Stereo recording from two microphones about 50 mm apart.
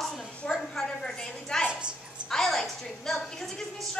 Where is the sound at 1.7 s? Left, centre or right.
Centre.